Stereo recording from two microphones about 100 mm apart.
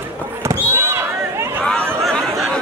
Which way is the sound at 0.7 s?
25° right (ahead or behind).